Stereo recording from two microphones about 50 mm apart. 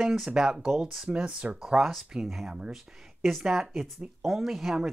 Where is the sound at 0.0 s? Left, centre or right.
Centre.